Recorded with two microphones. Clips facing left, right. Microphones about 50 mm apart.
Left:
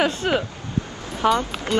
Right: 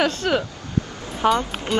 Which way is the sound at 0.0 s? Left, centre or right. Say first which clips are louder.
Even; centre.